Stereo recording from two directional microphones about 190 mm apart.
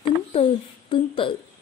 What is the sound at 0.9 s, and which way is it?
Speech, 25° left (ahead or behind).